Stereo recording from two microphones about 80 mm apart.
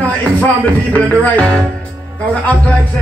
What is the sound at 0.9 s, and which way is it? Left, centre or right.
Music, centre.